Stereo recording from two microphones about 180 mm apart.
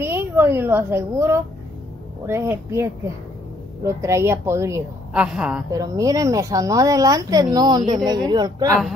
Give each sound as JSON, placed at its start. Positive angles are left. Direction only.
{"t": 0.0, "sound": "a woman's voice", "side_deg": -10}
{"t": 5.7, "sound": "speech", "side_deg": -20}